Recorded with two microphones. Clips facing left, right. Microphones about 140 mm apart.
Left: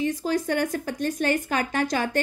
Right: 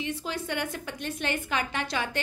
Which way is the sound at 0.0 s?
40° left (ahead or behind).